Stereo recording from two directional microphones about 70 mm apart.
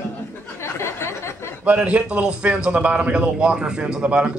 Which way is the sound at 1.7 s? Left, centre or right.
Centre.